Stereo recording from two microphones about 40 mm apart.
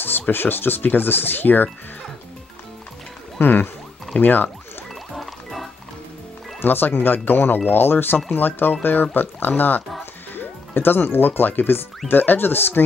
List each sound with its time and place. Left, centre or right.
0.3 s speech: left
3.3 s speech: left
5.1 s music: centre
6.6 s speech: left